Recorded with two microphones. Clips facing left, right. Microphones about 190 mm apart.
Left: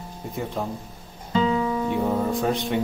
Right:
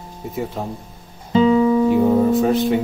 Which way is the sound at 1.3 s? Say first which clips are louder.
Right 9 dB; 25° right (ahead or behind).